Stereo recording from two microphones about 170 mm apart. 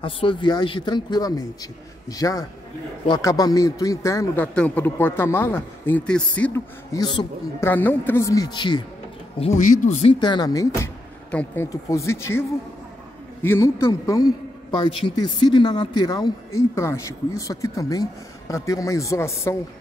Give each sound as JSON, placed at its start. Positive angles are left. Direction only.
{"t": 0.0, "sound": "a man's voice", "side_deg": 30}
{"t": 6.9, "sound": "a man's voice", "side_deg": 20}
{"t": 9.6, "sound": "speech", "side_deg": 50}
{"t": 10.1, "sound": "a man's voice", "side_deg": 25}